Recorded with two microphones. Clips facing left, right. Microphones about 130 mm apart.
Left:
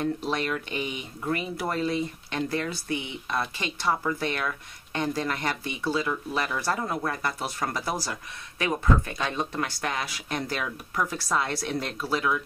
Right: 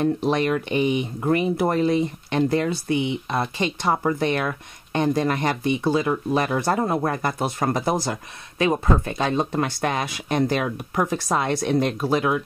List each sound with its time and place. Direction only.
0.0 s speech: 20° right (ahead or behind)
6.8 s speech: 35° right (ahead or behind)